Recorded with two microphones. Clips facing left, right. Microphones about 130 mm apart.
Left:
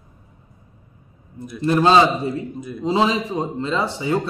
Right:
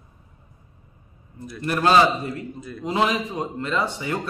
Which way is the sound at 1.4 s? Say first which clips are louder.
Left 5 dB; 20° left (ahead or behind).